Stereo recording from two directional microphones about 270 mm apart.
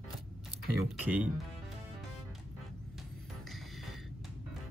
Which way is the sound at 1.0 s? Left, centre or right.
Centre.